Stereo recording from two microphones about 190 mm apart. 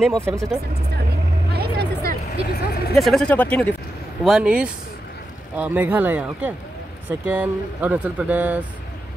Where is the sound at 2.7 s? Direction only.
55° left (ahead or behind).